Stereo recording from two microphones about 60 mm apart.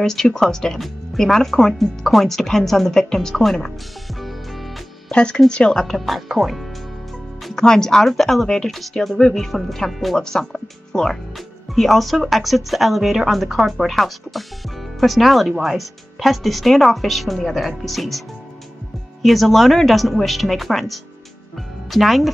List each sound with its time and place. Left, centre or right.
0.0 s speech: centre
5.1 s speech: centre
7.5 s speech: centre
19.2 s speech: centre